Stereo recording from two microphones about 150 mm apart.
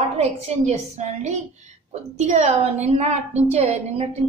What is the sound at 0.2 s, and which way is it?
A woman's voice, 50° right (ahead or behind).